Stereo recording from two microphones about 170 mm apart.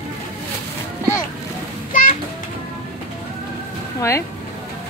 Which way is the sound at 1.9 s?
55° left (ahead or behind).